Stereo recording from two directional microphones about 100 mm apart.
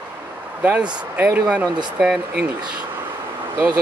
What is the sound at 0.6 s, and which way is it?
Speech, 15° right (ahead or behind).